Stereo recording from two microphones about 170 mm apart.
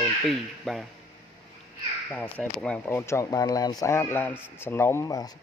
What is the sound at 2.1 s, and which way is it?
Speech, 5° left (ahead or behind).